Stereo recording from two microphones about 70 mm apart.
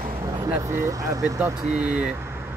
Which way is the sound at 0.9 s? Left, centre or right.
Right.